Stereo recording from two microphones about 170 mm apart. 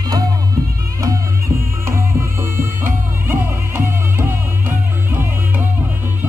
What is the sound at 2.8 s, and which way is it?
Music, 15° right (ahead or behind).